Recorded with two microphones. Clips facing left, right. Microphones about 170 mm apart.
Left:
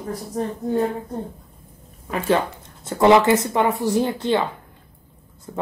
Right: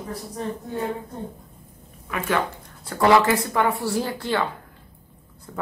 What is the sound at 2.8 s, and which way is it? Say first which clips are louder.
Speech: left 3 dB; 20° left (ahead or behind).